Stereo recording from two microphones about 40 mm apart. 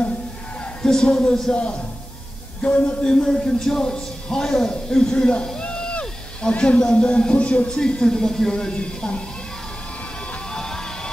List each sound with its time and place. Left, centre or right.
0.8 s a man's voice: centre
1.5 s speech: left
3.1 s a man's voice: centre
5.6 s a sound: left
6.8 s speech: left
10.5 s music: centre